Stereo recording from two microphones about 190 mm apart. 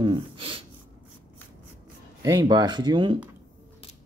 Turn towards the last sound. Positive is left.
turn(degrees=-25)  # may be behind; listen again after turning